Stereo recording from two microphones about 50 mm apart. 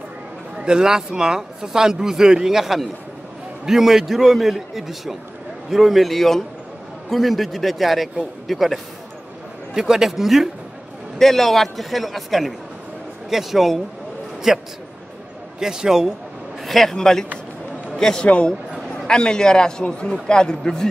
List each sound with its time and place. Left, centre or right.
0.6 s a man's voice: centre
9.8 s speech: centre
11.1 s a man's voice: centre
16.6 s a man's voice: centre
18.2 s a man's voice: left